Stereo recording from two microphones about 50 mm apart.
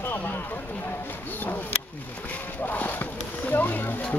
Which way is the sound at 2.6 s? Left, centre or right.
Left.